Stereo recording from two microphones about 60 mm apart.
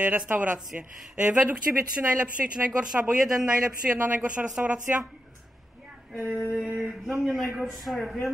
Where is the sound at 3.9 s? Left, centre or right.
Right.